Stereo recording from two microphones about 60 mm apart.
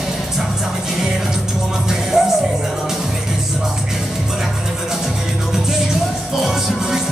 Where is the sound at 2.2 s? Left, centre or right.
Centre.